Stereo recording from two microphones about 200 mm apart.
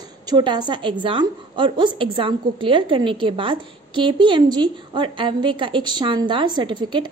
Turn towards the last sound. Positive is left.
turn(degrees=-25)  # may be behind; listen again after turning